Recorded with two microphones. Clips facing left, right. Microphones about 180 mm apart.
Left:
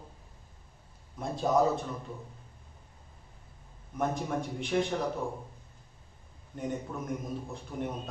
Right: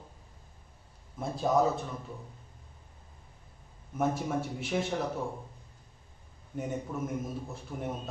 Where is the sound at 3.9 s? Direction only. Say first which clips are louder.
Right 1 dB; 5° right (ahead or behind).